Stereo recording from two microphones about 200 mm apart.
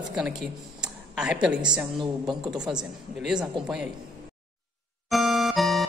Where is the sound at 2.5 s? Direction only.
5° right (ahead or behind).